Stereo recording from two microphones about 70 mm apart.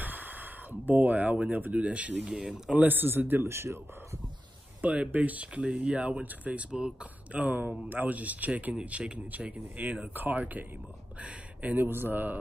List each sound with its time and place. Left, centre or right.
0.0 s speech: right
2.3 s speech: centre
2.7 s speech: right
4.8 s speech: right